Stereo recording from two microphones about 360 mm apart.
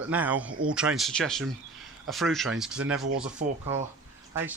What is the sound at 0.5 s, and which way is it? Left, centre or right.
Speech, right.